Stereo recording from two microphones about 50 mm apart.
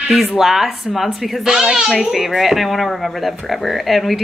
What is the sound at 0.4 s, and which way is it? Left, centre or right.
A child's voice, centre.